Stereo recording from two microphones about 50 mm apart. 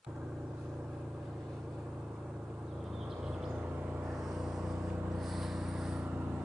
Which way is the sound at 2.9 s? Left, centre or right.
Centre.